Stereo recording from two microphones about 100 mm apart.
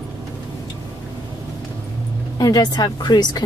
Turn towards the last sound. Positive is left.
turn(degrees=45)  # may be behind; listen again after turning